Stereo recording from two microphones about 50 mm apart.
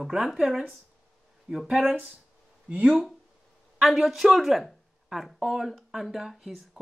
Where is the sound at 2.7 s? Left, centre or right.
Right.